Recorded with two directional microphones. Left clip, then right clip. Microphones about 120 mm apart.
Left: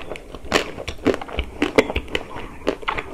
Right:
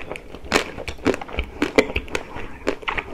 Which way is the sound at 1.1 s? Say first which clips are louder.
Left 1 dB; 30° right (ahead or behind).